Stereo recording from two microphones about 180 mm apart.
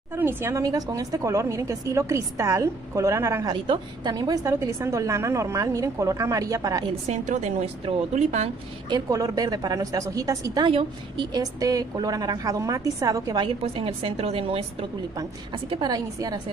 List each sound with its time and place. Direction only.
0.1 s a woman's voice: 10° right (ahead or behind)
7.1 s a woman's voice: 40° right (ahead or behind)
8.9 s a woman's voice: 20° right (ahead or behind)